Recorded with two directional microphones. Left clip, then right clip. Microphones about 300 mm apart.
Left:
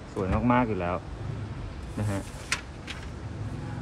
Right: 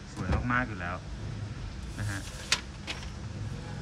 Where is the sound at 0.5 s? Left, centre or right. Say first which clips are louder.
Left 5 dB; centre.